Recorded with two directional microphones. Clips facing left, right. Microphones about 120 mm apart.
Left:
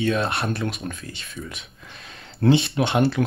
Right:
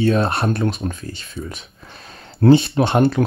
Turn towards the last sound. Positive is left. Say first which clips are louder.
# right 4 dB
turn(degrees=-40)  # may be behind; listen again after turning